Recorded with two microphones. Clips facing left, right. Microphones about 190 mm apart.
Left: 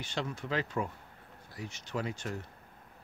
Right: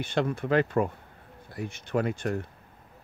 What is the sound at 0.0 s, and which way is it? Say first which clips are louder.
Speech: right 9 dB; 55° right (ahead or behind).